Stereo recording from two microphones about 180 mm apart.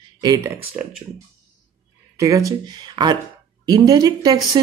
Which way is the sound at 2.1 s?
20° right (ahead or behind).